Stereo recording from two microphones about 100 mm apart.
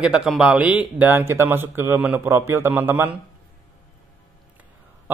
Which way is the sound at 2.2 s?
25° right (ahead or behind).